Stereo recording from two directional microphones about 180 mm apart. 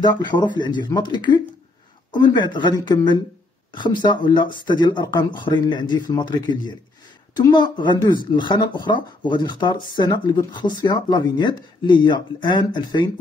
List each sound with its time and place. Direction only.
0.0 s speech: 25° left (ahead or behind)